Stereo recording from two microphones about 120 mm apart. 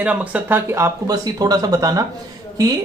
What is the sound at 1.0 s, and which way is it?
Speech, 30° right (ahead or behind).